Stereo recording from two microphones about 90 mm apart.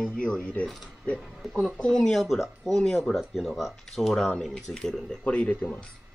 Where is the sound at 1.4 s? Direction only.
5° right (ahead or behind).